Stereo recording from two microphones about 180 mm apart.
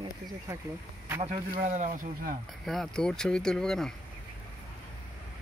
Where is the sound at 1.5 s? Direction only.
45° right (ahead or behind).